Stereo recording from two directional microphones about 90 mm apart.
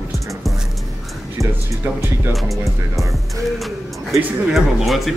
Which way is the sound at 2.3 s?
Centre (ahead or behind).